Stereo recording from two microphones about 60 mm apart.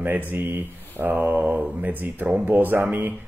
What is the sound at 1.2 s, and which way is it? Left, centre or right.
Speech, right.